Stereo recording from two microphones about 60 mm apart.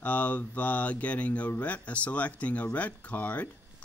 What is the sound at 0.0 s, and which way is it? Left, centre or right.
Speech, left.